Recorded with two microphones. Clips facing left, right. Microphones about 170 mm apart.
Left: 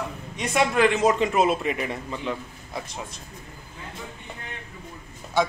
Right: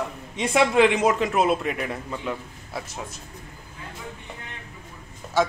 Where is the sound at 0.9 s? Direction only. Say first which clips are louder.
Even; 5° right (ahead or behind).